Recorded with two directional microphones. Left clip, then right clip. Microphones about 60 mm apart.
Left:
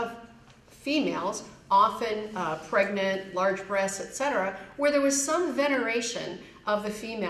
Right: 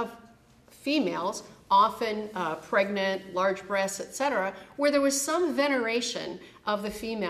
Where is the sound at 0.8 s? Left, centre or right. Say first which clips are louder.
Even; centre.